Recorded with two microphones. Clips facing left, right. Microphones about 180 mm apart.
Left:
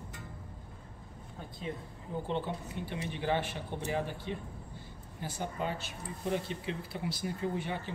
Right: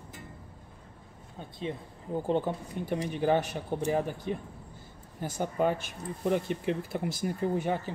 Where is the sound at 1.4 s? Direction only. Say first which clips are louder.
Right 3 dB; 25° right (ahead or behind).